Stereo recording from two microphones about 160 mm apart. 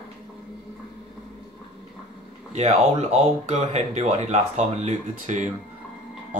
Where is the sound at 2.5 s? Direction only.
45° right (ahead or behind).